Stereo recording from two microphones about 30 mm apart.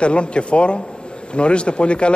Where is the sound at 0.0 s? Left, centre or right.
Left.